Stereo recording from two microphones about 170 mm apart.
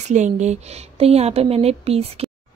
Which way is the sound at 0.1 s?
45° right (ahead or behind).